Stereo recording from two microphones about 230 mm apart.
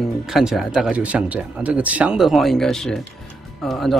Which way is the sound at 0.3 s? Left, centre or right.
Centre.